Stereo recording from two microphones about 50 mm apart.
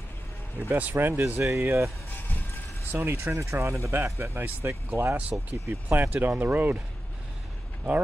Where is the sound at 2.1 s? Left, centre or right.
Left.